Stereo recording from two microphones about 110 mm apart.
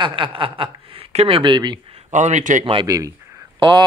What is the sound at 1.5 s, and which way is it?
Speech, 40° right (ahead or behind).